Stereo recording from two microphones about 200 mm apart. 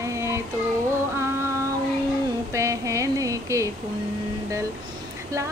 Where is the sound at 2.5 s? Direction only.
15° right (ahead or behind).